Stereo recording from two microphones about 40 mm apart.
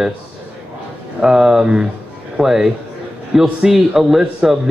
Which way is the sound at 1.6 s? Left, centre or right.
Right.